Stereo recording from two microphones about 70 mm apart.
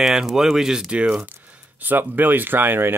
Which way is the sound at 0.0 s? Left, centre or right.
Centre.